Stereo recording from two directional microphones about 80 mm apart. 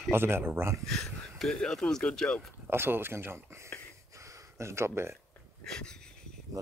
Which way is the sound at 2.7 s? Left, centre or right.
Right.